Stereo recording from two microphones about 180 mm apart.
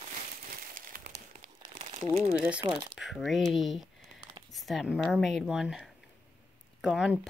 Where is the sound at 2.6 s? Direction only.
20° right (ahead or behind).